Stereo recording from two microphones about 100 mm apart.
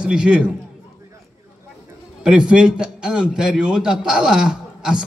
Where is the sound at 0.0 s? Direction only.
10° right (ahead or behind).